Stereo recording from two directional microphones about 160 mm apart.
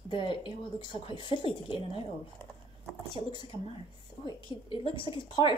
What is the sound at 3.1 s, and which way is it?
A woman's voice, 25° left (ahead or behind).